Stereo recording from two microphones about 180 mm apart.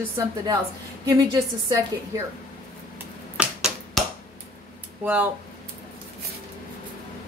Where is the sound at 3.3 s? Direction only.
5° right (ahead or behind).